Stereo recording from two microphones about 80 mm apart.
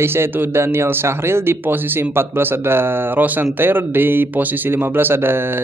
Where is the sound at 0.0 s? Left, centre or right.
Right.